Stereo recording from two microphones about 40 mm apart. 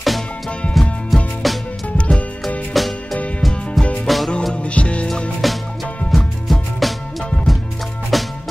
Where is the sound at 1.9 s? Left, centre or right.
Left.